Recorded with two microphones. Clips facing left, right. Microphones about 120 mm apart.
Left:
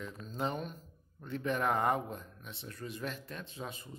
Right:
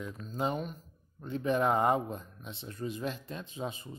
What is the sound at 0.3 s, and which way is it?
Speech, 10° right (ahead or behind).